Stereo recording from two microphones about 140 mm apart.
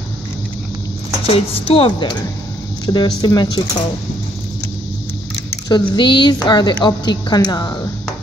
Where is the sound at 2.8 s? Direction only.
30° left (ahead or behind).